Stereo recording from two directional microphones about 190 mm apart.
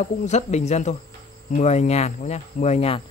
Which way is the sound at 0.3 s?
35° left (ahead or behind).